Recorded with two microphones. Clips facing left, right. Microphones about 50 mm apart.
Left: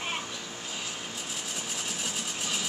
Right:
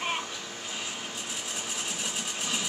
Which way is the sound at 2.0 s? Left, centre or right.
Centre.